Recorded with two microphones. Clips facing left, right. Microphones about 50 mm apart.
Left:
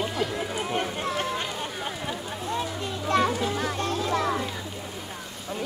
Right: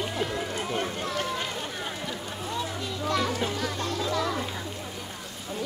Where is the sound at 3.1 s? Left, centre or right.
Left.